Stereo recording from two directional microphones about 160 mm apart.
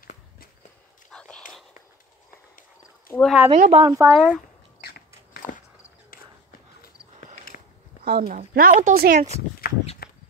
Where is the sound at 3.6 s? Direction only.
40° right (ahead or behind).